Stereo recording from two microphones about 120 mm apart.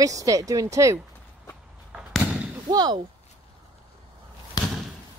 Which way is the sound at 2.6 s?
35° right (ahead or behind).